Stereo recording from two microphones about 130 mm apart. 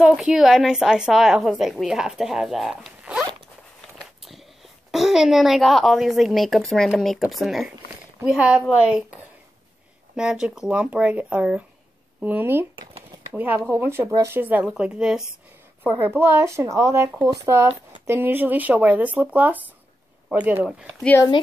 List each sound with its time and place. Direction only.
0.0 s a woman's voice: 5° right (ahead or behind)
4.0 s biting: centre (ahead or behind)
4.9 s a woman's voice: 5° right (ahead or behind)
10.1 s speech: 5° right (ahead or behind)
15.8 s speech: 15° right (ahead or behind)